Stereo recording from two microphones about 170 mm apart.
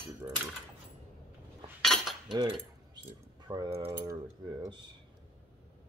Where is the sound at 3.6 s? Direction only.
35° right (ahead or behind).